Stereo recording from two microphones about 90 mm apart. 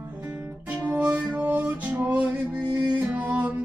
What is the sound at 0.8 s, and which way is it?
Music, 15° right (ahead or behind).